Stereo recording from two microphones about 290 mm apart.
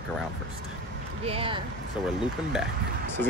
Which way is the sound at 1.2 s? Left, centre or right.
Centre.